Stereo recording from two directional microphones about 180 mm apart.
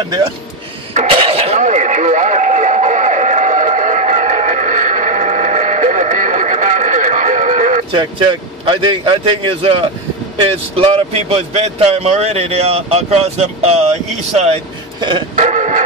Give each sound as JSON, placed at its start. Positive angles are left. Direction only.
{"t": 0.9, "sound": "a sound", "side_deg": -35}
{"t": 8.6, "sound": "a man's voice", "side_deg": -30}
{"t": 15.3, "sound": "music", "side_deg": -40}